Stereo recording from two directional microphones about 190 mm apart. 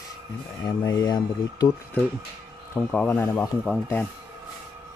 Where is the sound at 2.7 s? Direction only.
5° left (ahead or behind).